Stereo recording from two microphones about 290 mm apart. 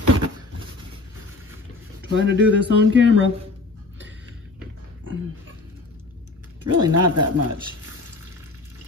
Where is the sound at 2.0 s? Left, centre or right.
Right.